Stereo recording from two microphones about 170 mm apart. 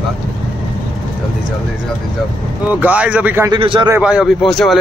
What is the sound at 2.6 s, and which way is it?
Speech, 10° right (ahead or behind).